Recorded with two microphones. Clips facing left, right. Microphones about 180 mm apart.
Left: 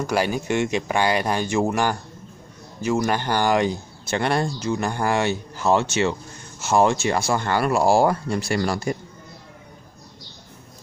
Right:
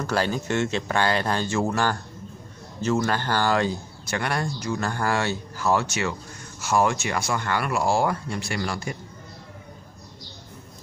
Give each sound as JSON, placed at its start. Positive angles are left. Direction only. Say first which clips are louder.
{"t": 0.0, "sound": "speech", "louder": "left 2 dB", "side_deg": 15}